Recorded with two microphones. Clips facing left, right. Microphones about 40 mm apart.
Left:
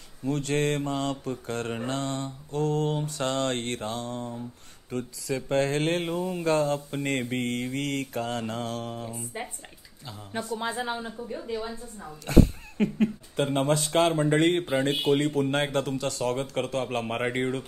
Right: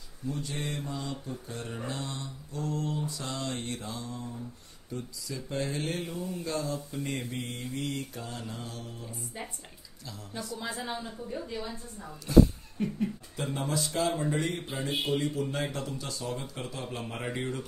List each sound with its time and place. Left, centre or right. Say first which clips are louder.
0.2 s speech: left 9 dB; left
10.3 s a woman's voice: left 6 dB; left
12.3 s speech: even; left